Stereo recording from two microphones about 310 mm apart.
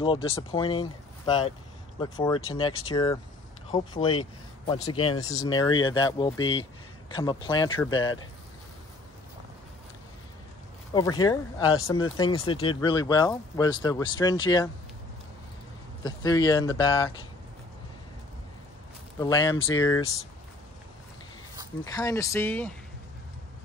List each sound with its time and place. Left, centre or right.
0.0 s speech: centre
10.9 s speech: centre
16.0 s speech: centre
19.1 s speech: centre
21.9 s speech: centre